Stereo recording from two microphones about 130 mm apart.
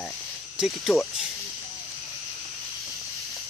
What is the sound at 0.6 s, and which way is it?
Speech, centre (ahead or behind).